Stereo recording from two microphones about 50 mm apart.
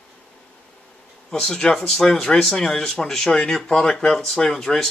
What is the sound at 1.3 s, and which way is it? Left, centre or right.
Speech, centre.